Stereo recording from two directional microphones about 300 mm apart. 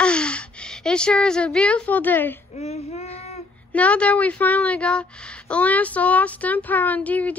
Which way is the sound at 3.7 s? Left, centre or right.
Centre.